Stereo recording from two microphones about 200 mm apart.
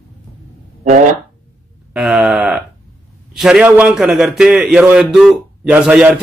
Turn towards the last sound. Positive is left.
turn(degrees=-5)  # may be behind; listen again after turning